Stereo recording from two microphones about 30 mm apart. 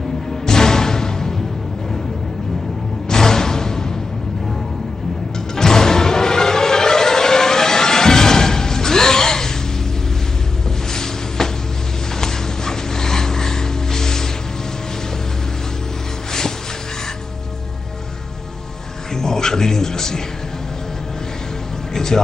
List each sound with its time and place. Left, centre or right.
0.5 s music: centre
3.1 s music: centre
5.6 s music: centre
10.9 s a sound: centre
12.2 s music: centre
19.1 s music: centre
21.9 s music: centre